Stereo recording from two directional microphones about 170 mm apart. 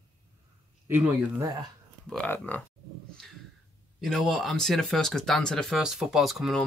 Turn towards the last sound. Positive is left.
turn(degrees=0)  # may be behind; listen again after turning